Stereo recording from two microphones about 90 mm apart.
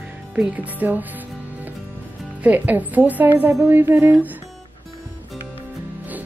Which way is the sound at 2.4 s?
20° right (ahead or behind).